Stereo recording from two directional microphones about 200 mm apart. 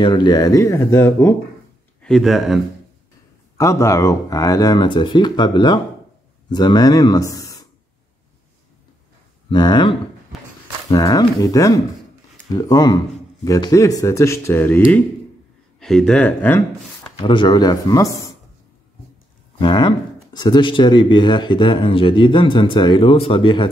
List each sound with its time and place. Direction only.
0.0 s speech: 20° left (ahead or behind)
2.0 s speech: centre (ahead or behind)
3.5 s speech: 15° left (ahead or behind)
9.5 s speech: 20° left (ahead or behind)
10.3 s a sound: centre (ahead or behind)
10.9 s speech: 15° left (ahead or behind)
15.8 s speech: 5° left (ahead or behind)
17.2 s speech: 25° left (ahead or behind)
19.6 s speech: 20° left (ahead or behind)